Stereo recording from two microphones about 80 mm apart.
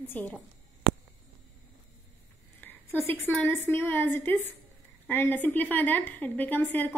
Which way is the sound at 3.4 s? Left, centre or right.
Left.